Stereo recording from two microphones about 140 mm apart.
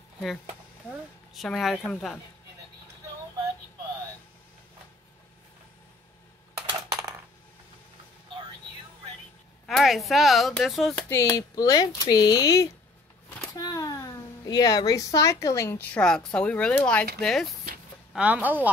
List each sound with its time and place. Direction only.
1.3 s speech: centre (ahead or behind)
6.9 s coin: 25° right (ahead or behind)
9.7 s speech: centre (ahead or behind)
11.1 s speech: 25° left (ahead or behind); by 17.6 s centre (ahead or behind)
18.1 s a woman's voice: 10° right (ahead or behind)